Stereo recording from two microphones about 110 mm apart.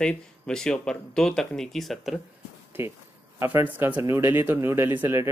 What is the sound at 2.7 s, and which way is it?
Speech, 20° right (ahead or behind).